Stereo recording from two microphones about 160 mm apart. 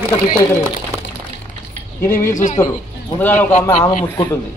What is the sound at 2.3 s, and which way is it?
Speech, 50° left (ahead or behind).